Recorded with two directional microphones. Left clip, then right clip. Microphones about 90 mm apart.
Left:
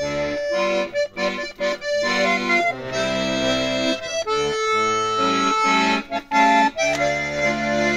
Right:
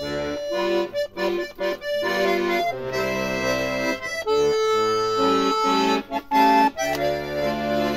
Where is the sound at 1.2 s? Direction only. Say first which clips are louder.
Left 1 dB; 30° right (ahead or behind).